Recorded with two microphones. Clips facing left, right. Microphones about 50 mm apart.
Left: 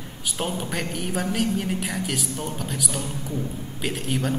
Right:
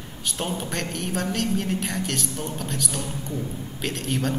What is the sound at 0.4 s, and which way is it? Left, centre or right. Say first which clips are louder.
A woman's voice: left 1 dB; centre.